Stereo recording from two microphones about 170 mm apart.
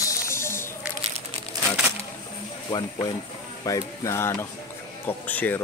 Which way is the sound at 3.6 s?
20° left (ahead or behind).